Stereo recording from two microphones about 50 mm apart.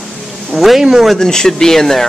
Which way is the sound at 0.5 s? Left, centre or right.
Centre.